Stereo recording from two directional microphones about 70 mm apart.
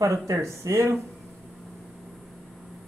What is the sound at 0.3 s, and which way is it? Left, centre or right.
Speech, right.